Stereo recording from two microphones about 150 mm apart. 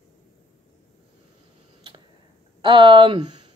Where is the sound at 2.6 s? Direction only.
35° right (ahead or behind).